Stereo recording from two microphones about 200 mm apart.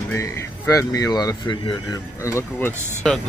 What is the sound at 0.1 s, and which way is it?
Speech, 15° left (ahead or behind).